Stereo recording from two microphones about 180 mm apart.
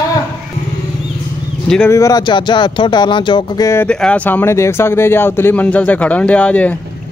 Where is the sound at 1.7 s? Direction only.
10° left (ahead or behind).